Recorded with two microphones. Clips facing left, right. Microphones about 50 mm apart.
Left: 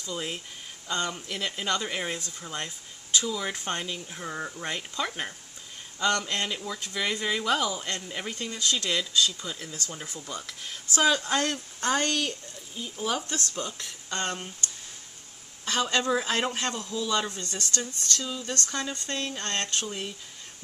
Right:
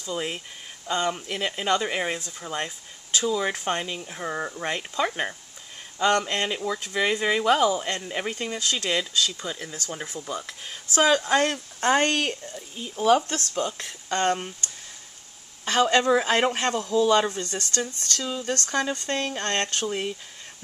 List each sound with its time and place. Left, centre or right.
0.0 s a man's voice: right
13.6 s a man's voice: right